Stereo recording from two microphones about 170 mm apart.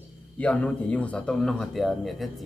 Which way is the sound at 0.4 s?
5° left (ahead or behind).